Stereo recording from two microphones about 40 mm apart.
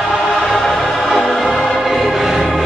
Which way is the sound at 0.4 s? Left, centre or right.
Centre.